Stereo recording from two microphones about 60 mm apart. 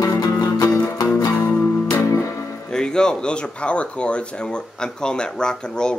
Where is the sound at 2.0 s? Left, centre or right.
Left.